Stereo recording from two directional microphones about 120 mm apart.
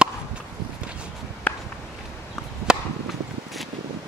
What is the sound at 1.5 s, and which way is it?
Walk, 10° left (ahead or behind).